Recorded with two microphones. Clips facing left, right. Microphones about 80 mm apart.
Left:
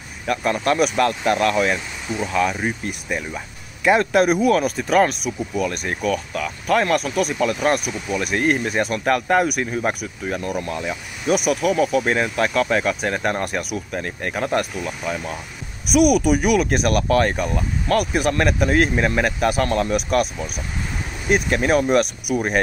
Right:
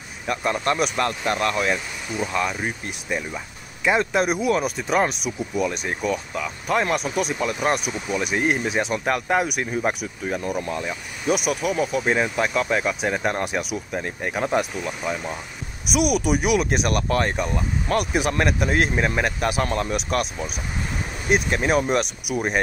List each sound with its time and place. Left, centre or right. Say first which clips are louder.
0.3 s speech: left 3 dB; centre
2.1 s speech: left 2 dB; left
2.8 s speech: left 2 dB; centre
6.3 s speech: left 3 dB; centre
6.8 s speech: left 3 dB; centre